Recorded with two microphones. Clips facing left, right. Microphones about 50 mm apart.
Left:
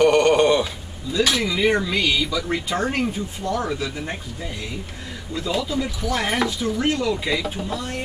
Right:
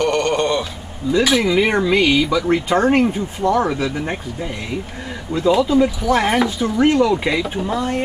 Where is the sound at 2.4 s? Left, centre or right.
Right; by 6.8 s centre.